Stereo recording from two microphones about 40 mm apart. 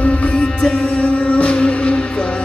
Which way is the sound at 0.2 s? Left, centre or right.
Left.